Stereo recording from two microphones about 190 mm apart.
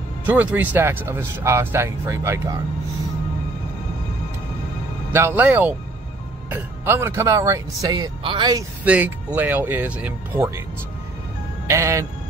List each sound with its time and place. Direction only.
0.3 s speech: 10° right (ahead or behind)
5.1 s speech: 10° right (ahead or behind)
8.8 s speech: 10° right (ahead or behind)
11.6 s speech: 15° right (ahead or behind)